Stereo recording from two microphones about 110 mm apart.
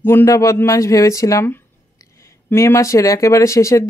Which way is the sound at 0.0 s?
25° left (ahead or behind).